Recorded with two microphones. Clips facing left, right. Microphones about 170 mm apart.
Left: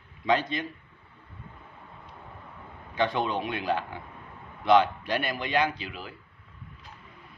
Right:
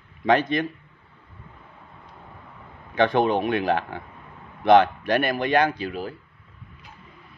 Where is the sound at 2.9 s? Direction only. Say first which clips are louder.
Right 7 dB; 55° right (ahead or behind).